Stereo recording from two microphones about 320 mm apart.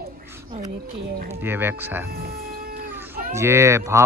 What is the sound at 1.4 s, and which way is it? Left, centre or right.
Speech, centre.